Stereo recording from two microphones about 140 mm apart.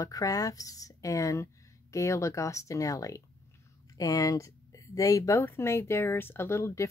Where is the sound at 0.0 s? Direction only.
25° left (ahead or behind).